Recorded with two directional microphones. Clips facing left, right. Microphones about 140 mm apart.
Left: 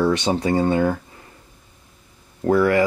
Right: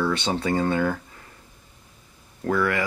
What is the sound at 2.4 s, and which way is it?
Speech, 30° left (ahead or behind).